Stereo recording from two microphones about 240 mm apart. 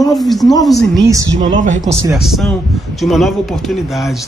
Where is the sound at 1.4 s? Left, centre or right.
Right.